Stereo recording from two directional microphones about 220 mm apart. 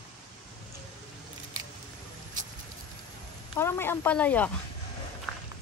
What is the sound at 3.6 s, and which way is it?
Speech, 10° left (ahead or behind).